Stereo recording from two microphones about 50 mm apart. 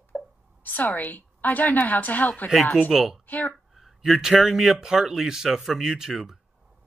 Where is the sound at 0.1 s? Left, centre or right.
Left.